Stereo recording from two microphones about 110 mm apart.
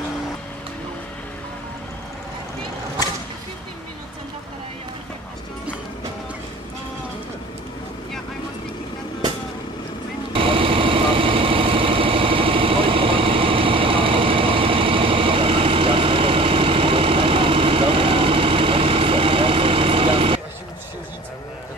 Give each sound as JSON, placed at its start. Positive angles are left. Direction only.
{"t": 10.3, "sound": "vehicle", "side_deg": -55}